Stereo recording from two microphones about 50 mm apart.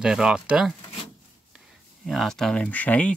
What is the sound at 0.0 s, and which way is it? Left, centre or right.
Speech, centre.